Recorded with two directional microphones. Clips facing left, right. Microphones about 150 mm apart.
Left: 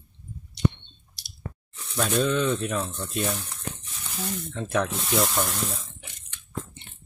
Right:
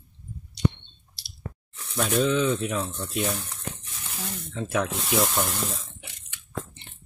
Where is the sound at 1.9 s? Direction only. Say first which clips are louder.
Right 1 dB; 10° right (ahead or behind).